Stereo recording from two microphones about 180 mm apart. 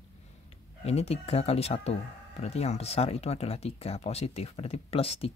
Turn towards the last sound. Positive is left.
turn(degrees=35)  # may be behind; listen again after turning